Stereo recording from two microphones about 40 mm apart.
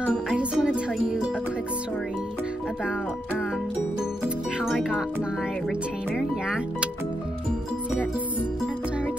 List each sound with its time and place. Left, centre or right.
0.6 s music: centre
4.6 s speech: centre